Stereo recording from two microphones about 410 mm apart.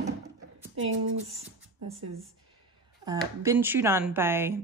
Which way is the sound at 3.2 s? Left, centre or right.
Centre.